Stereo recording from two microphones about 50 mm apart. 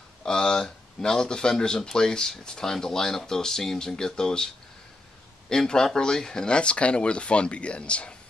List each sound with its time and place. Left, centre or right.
0.2 s speech: centre
5.5 s speech: centre